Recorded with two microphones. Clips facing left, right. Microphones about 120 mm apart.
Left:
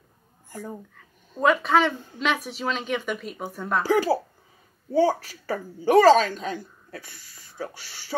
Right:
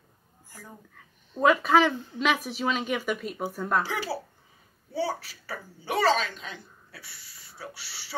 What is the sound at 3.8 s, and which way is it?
A woman's voice, 45° left (ahead or behind).